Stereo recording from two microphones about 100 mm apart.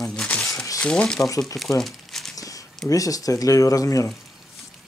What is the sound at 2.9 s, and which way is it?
Speech, 35° left (ahead or behind).